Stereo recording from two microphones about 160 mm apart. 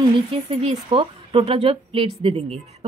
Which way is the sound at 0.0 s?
35° right (ahead or behind).